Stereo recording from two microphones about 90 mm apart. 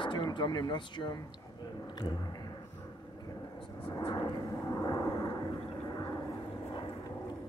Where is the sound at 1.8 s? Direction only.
55° left (ahead or behind).